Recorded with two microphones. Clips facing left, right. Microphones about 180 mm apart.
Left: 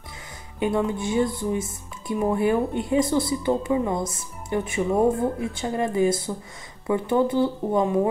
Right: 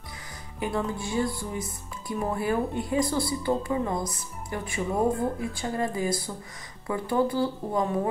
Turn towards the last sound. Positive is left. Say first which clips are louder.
# left 5 dB
turn(degrees=20)  # may be behind; listen again after turning